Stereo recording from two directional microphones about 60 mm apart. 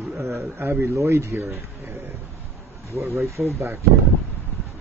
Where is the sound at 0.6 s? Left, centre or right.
Right.